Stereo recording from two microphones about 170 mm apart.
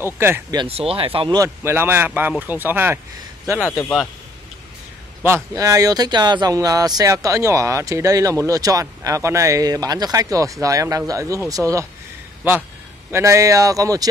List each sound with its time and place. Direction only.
0.0 s speech: 15° right (ahead or behind)
0.6 s speech: 35° right (ahead or behind)
1.4 s speech: 15° right (ahead or behind)
5.2 s speech: 15° right (ahead or behind)
13.1 s speech: 20° right (ahead or behind)